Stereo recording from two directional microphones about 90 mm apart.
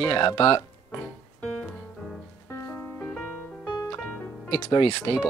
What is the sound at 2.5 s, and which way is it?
Music, 35° left (ahead or behind).